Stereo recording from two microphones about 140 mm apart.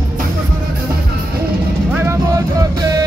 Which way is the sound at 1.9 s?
15° right (ahead or behind).